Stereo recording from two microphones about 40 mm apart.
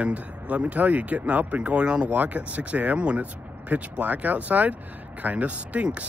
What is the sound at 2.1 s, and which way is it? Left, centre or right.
Speech, right.